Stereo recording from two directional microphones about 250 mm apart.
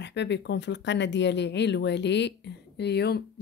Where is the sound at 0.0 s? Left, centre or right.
Left.